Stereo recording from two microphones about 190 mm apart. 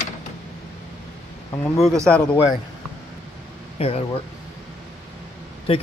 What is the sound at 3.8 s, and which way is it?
Speech, 30° left (ahead or behind).